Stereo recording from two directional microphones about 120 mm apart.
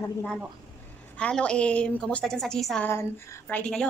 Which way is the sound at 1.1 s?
10° left (ahead or behind).